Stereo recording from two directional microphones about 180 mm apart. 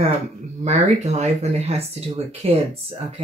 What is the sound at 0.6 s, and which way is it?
Speech, 35° right (ahead or behind).